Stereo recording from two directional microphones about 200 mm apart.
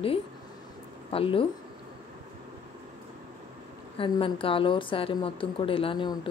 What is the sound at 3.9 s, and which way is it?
Speech, 25° left (ahead or behind).